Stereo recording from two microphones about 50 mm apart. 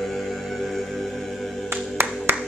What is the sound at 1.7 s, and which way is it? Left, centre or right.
Music, right.